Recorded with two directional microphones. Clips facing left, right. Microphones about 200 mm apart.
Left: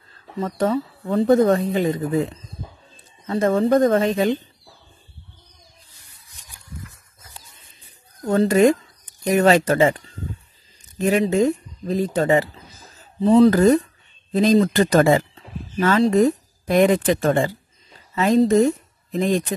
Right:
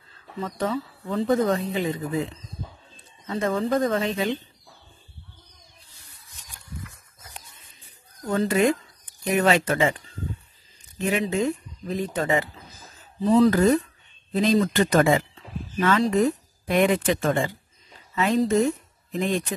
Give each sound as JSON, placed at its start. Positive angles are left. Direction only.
{"t": 0.4, "sound": "speech", "side_deg": 40}
{"t": 3.3, "sound": "speech", "side_deg": 40}
{"t": 8.2, "sound": "speech", "side_deg": 35}